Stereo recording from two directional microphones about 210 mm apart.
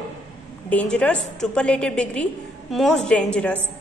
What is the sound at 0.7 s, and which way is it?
A woman's voice, 5° left (ahead or behind).